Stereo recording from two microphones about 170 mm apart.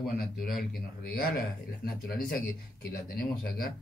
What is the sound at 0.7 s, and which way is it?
Speech, 65° left (ahead or behind).